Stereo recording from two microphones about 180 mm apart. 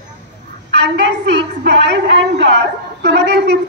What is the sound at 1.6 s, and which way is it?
A woman's voice, 75° right (ahead or behind).